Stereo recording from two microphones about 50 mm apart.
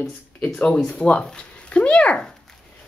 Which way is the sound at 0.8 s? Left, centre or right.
Left.